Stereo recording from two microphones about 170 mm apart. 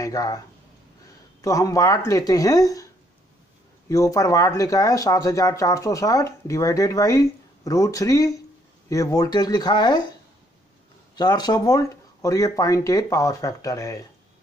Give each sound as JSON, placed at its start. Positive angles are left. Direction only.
{"t": 0.0, "sound": "speech", "side_deg": 20}
{"t": 1.4, "sound": "speech", "side_deg": 20}
{"t": 3.9, "sound": "speech", "side_deg": 20}
{"t": 11.1, "sound": "speech", "side_deg": 25}